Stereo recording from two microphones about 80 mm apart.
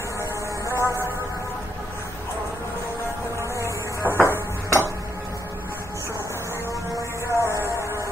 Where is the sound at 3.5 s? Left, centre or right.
Left.